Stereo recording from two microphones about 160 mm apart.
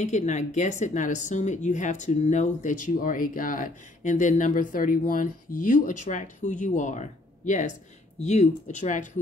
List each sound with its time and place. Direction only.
0.0 s speech: 45° left (ahead or behind)